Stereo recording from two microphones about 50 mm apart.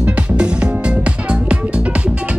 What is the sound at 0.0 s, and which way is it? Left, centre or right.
Music, right.